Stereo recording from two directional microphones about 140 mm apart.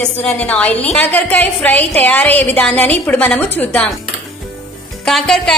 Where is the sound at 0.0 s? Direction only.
5° left (ahead or behind).